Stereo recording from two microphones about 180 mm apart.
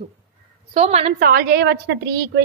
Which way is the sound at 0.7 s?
35° right (ahead or behind).